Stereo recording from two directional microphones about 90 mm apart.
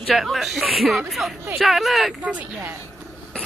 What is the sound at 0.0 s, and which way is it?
Speech, centre (ahead or behind).